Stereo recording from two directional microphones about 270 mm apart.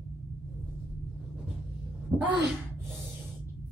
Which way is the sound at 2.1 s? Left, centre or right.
Centre.